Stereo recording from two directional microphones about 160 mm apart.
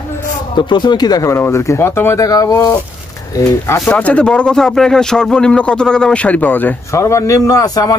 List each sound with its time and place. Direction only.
0.6 s speech: 30° left (ahead or behind)
3.8 s speech: 5° left (ahead or behind); by 8.0 s 20° left (ahead or behind)